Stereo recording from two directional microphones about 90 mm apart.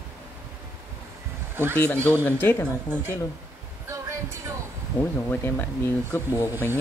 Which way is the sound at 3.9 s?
30° right (ahead or behind).